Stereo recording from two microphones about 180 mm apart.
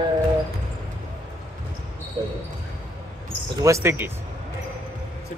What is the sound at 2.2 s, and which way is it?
Speech, 25° right (ahead or behind).